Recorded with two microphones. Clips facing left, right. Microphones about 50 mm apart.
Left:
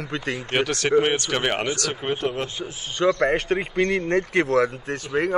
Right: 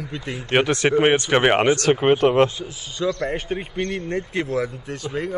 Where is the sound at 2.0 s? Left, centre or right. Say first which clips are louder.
Right 10 dB; right.